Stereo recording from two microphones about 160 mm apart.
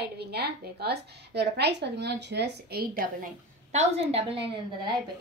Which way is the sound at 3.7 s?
40° right (ahead or behind).